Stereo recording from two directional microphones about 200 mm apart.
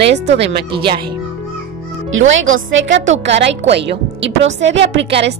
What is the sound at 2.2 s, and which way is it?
A woman's voice, 75° right (ahead or behind).